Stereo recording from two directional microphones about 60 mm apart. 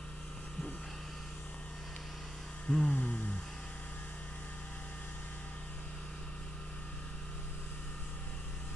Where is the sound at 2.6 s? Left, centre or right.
Centre.